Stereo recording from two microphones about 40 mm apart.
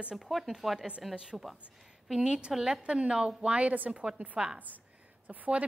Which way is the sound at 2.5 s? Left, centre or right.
Centre.